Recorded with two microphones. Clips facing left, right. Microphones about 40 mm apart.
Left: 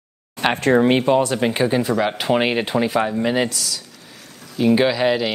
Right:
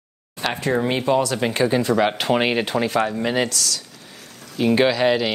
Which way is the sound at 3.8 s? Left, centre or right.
Centre.